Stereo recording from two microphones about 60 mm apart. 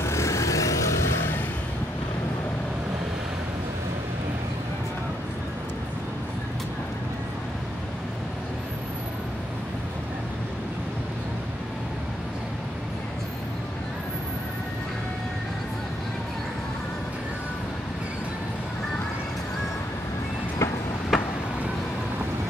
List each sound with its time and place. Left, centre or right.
0.0 s vehicle: left
21.1 s vehicle: centre